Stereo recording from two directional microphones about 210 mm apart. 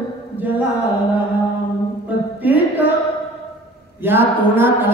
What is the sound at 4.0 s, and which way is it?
Speech, 10° right (ahead or behind).